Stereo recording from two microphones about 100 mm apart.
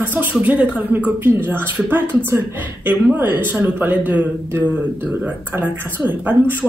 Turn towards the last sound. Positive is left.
turn(degrees=-15)  # may be behind; listen again after turning